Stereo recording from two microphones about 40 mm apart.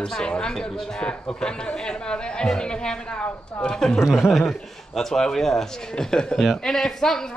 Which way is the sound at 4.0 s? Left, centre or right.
Centre.